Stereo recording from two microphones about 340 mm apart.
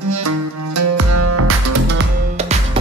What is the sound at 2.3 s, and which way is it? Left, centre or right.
Music, centre.